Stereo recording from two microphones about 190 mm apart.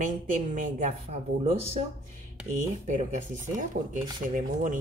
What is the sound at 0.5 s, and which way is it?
Speech, 45° right (ahead or behind).